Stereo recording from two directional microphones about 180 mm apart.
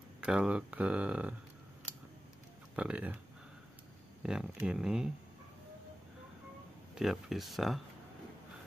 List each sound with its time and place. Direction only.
0.2 s speech: 5° right (ahead or behind)
2.7 s speech: 5° right (ahead or behind)
4.2 s speech: 5° right (ahead or behind)
7.0 s speech: centre (ahead or behind)